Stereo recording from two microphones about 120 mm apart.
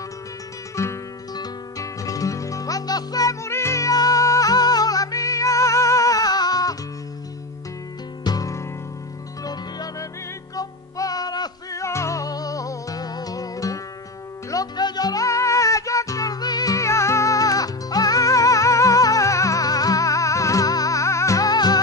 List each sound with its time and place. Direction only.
0.7 s music: 30° left (ahead or behind)
8.2 s music: 30° left (ahead or behind)